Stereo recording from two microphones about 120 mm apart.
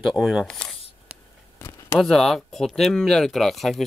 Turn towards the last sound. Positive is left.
turn(degrees=0)  # may be behind; listen again after turning